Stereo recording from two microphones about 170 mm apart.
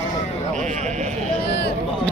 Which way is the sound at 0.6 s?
45° right (ahead or behind).